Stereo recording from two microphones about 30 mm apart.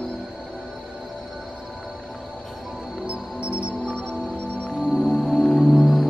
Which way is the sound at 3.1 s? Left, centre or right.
Right.